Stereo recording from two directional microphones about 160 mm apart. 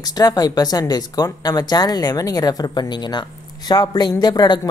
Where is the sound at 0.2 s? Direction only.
25° left (ahead or behind).